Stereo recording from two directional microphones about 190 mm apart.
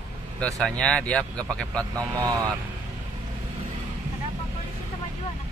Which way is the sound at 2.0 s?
20° right (ahead or behind).